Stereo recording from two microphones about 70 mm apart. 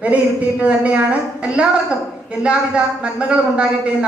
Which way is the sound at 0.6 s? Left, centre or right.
Right.